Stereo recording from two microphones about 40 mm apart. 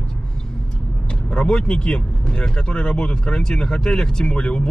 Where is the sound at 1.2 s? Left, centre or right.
Left.